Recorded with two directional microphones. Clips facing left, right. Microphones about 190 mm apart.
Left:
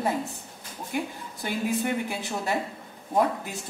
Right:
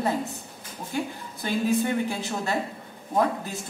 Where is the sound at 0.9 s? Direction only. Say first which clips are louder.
Right 1 dB; 15° left (ahead or behind).